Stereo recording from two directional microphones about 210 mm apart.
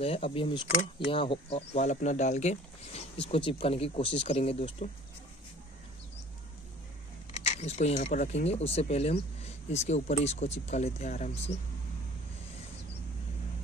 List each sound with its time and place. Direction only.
0.0 s speech: 25° left (ahead or behind)
7.4 s speech: 30° left (ahead or behind)